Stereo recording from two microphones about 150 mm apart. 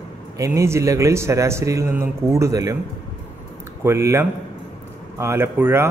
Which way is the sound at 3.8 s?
15° right (ahead or behind).